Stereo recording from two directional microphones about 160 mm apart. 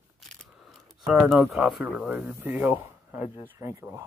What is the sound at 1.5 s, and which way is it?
Speech, centre (ahead or behind).